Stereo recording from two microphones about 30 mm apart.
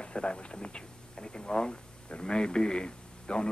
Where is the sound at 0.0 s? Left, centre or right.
Left.